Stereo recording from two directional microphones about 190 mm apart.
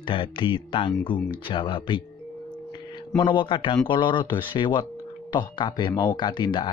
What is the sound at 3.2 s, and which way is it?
A man's voice, 25° left (ahead or behind).